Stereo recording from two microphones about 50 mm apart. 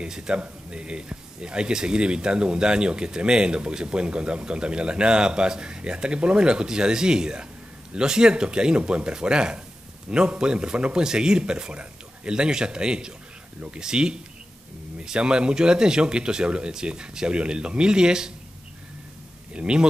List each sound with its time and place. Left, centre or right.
0.0 s speech: centre
19.5 s a man's voice: centre